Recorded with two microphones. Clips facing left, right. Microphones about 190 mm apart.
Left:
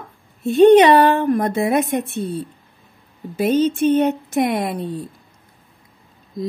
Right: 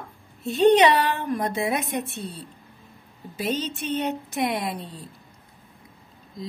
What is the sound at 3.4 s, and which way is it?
Speech, 50° left (ahead or behind).